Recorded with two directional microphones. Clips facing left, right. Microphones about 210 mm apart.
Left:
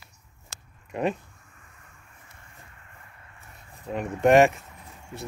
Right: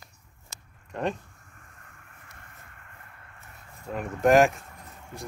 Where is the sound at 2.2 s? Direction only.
60° right (ahead or behind).